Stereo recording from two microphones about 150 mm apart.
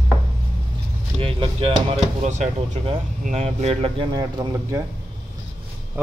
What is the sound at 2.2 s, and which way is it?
Speech, 50° right (ahead or behind).